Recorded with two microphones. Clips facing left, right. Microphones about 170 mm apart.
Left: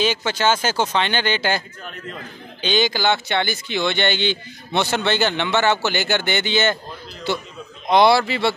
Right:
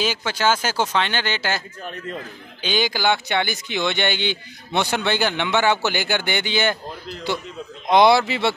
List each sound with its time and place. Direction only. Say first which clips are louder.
0.0 s speech: left 2 dB; 5° right (ahead or behind)
2.6 s speech: left 2 dB; 10° right (ahead or behind)